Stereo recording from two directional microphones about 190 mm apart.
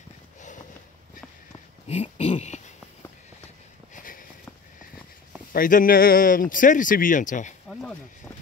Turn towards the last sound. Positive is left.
turn(degrees=40)  # may be behind; listen again after turning